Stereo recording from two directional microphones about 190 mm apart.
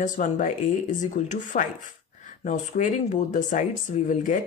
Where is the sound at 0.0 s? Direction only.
45° left (ahead or behind).